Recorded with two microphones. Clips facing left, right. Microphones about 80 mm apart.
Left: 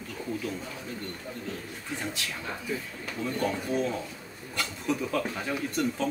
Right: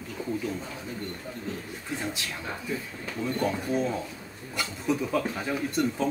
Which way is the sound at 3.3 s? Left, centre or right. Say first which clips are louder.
Right 1 dB; centre.